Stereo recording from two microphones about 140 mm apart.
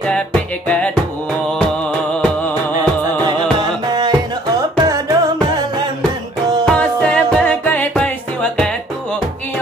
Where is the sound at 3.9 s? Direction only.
30° right (ahead or behind).